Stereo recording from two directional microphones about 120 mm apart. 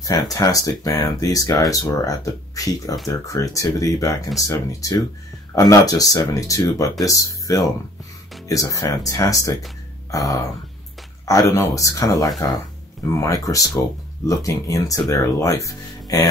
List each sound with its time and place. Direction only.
0.0 s speech: 30° left (ahead or behind)